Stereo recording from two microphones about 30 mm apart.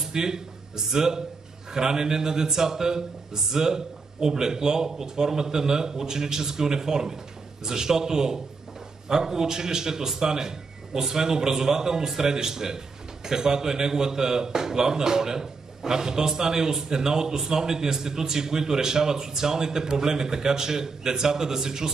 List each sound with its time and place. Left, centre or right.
0.1 s a man's voice: centre